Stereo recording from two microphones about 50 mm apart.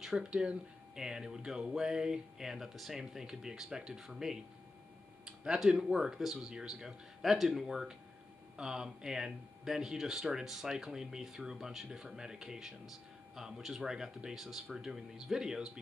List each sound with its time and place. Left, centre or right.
0.0 s speech: centre
5.2 s a sound: centre
5.8 s speech: centre